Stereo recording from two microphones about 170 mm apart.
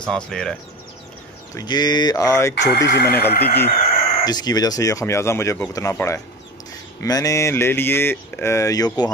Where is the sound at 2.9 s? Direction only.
70° left (ahead or behind).